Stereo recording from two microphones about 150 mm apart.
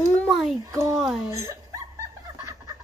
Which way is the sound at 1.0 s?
5° right (ahead or behind).